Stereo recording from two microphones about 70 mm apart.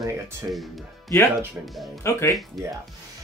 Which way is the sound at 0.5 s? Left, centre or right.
Centre.